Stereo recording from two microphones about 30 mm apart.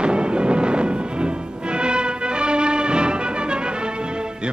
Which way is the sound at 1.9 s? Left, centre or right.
Right.